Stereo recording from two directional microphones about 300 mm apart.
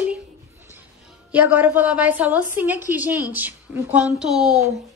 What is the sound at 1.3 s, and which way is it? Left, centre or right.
A woman's voice, centre.